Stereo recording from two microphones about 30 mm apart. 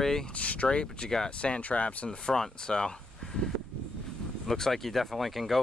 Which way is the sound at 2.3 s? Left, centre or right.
Left.